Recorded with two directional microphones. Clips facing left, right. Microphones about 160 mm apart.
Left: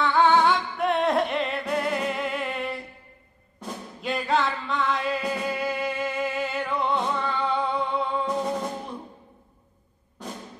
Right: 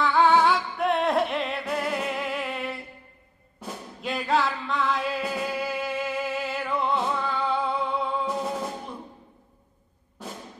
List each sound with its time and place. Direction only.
0.0 s music: centre (ahead or behind)